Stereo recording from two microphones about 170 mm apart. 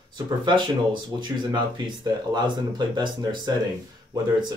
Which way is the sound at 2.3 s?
25° right (ahead or behind).